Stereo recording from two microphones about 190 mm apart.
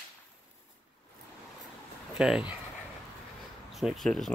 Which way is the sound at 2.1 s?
5° right (ahead or behind).